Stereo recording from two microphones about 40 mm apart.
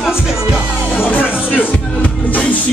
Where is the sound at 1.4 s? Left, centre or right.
Right.